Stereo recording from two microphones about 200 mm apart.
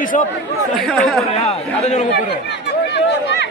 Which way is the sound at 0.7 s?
Centre (ahead or behind).